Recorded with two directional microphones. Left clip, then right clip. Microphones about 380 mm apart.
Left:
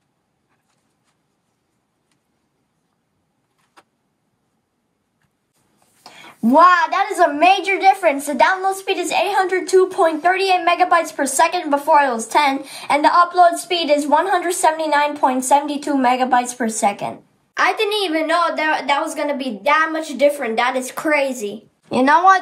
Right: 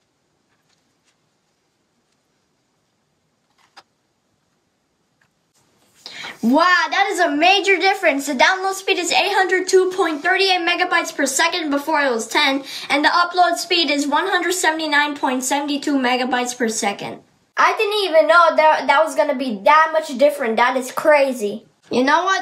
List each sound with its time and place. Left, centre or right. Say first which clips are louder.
6.0 s a woman's voice: even; centre
18.7 s a woman's voice: right 4 dB; centre
21.9 s a woman's voice: left 4 dB; centre